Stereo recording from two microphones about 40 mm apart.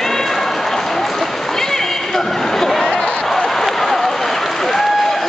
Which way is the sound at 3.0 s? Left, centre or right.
Left.